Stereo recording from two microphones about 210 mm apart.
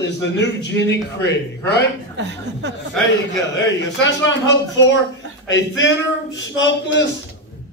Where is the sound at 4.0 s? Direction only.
60° left (ahead or behind).